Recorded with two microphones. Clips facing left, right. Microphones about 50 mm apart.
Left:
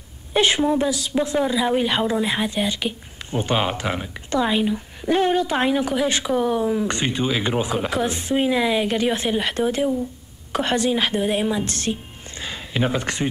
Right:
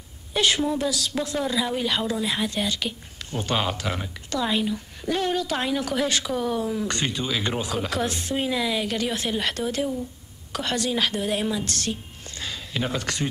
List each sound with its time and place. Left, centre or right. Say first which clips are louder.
0.3 s a woman's voice: left 4 dB; left